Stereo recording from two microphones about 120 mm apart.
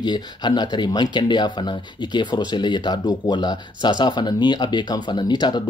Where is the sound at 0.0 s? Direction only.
35° left (ahead or behind).